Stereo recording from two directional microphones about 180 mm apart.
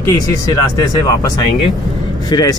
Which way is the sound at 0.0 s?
20° left (ahead or behind).